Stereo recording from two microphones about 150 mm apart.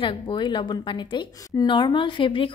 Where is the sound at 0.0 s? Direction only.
30° left (ahead or behind).